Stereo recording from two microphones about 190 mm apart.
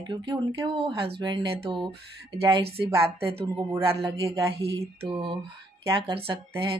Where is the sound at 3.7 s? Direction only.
15° right (ahead or behind).